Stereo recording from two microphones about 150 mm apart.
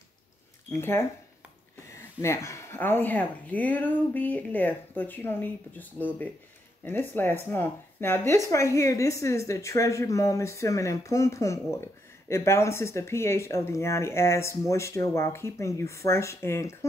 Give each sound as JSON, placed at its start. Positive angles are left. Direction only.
{"t": 0.7, "sound": "speech", "side_deg": 15}